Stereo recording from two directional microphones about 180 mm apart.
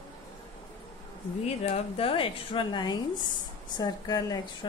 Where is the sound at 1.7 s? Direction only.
30° left (ahead or behind).